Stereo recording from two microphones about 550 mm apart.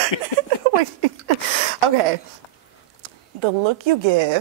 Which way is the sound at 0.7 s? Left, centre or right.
Right.